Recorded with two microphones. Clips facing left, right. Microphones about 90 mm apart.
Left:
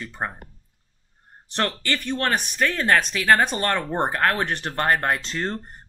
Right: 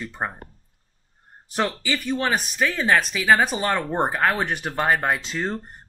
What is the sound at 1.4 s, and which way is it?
Speech, 5° right (ahead or behind).